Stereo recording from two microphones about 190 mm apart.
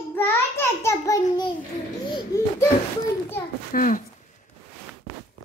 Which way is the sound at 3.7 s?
45° left (ahead or behind).